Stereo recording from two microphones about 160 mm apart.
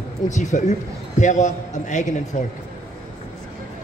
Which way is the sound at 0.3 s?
50° left (ahead or behind).